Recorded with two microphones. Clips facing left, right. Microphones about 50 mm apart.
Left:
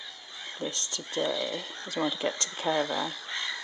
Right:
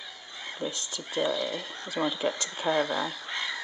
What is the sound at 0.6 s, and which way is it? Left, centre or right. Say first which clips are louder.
Speech: even; centre.